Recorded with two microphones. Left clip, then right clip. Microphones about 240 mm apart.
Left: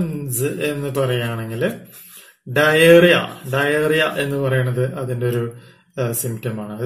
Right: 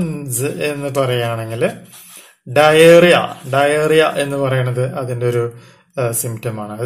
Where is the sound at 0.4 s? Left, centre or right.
Right.